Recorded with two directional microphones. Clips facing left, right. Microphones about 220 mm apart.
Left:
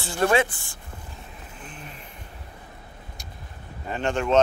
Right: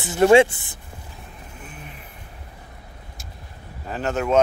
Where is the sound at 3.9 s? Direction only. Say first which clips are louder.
Right 1 dB; 5° right (ahead or behind).